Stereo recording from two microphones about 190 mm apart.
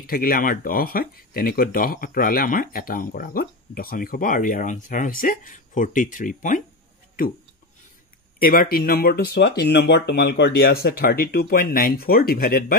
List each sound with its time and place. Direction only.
0.0 s speech: 50° left (ahead or behind)
8.4 s speech: 50° left (ahead or behind)